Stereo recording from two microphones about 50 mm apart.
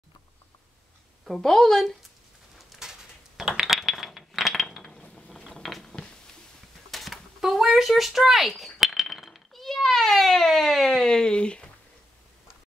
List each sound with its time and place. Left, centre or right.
1.2 s a woman's voice: centre
2.8 s mechanisms: centre
4.8 s gears: centre
5.6 s a sound: centre